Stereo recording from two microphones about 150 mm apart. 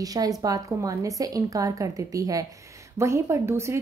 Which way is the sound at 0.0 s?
25° right (ahead or behind).